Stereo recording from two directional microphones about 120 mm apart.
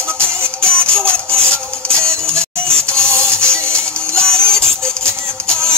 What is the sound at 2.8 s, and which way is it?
Music, 20° right (ahead or behind).